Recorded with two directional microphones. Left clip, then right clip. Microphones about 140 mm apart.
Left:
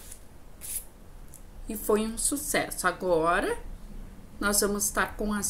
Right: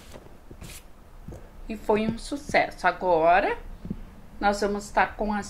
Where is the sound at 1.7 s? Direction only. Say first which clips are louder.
Right 2 dB; 50° left (ahead or behind).